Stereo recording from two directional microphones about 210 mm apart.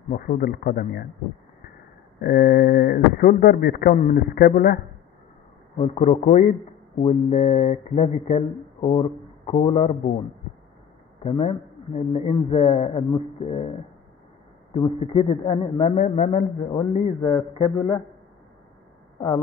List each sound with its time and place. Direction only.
0.1 s speech: 40° left (ahead or behind)
2.2 s speech: 50° left (ahead or behind)
5.8 s a man's voice: 35° left (ahead or behind)
11.2 s a man's voice: 30° left (ahead or behind)
16.7 s a man's voice: 20° left (ahead or behind)
19.1 s speech: 20° left (ahead or behind)